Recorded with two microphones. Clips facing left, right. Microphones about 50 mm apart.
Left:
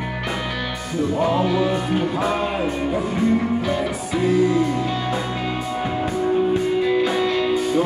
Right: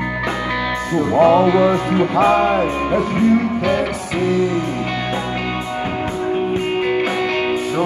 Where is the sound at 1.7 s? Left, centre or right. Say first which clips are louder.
Right 5 dB; right.